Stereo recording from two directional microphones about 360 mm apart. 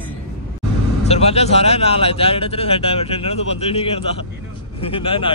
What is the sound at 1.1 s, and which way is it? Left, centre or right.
Speech, centre.